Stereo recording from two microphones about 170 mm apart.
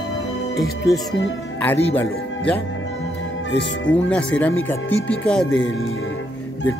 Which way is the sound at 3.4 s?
90° left.